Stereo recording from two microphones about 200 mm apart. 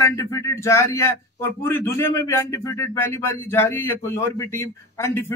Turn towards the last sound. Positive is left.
turn(degrees=15)  # may be behind; listen again after turning